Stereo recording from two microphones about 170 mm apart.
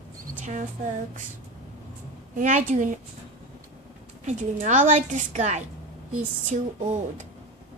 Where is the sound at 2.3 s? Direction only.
50° right (ahead or behind).